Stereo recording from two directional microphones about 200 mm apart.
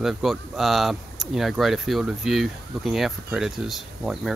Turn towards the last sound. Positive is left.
turn(degrees=0)  # may be behind; listen again after turning